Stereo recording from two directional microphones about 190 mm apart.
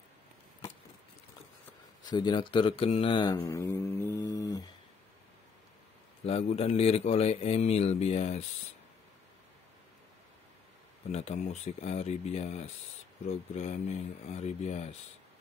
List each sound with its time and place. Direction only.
2.0 s speech: 20° left (ahead or behind)
6.2 s speech: 30° left (ahead or behind)
11.1 s speech: 35° left (ahead or behind)